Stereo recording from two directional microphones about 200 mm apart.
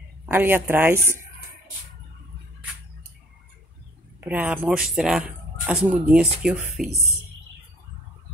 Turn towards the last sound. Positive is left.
turn(degrees=-5)  # may be behind; listen again after turning